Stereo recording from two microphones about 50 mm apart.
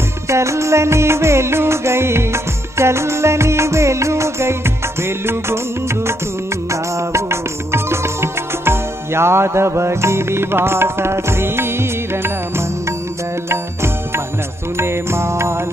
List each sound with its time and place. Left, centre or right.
0.3 s music: right
6.7 s music: right
14.8 s music: right